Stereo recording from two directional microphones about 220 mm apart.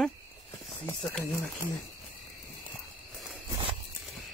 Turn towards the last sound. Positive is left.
turn(degrees=-15)  # may be behind; listen again after turning